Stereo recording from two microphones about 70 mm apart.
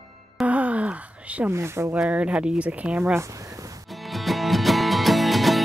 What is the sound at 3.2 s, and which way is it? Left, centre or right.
Speech, right.